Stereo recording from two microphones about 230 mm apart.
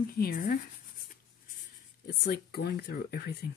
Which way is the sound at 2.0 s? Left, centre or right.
Left.